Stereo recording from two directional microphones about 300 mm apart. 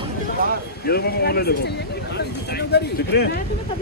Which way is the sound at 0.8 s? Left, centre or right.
Left.